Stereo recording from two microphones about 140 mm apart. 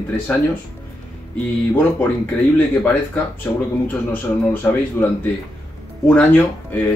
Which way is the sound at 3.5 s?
10° left (ahead or behind).